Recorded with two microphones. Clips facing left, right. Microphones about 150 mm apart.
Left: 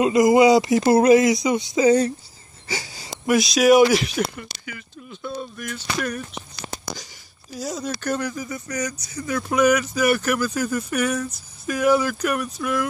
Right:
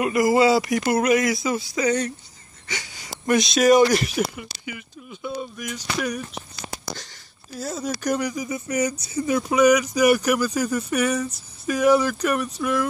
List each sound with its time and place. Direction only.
0.0 s speech: 20° left (ahead or behind)
2.7 s a sound: 35° left (ahead or behind)
3.3 s speech: centre (ahead or behind)
7.5 s speech: 5° right (ahead or behind)
10.5 s speech: 5° left (ahead or behind)
10.8 s speech: 5° right (ahead or behind)
11.1 s a sound: 10° right (ahead or behind)
11.7 s speech: 5° left (ahead or behind)